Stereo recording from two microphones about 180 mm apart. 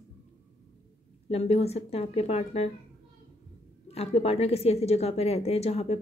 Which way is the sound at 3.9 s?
35° left (ahead or behind).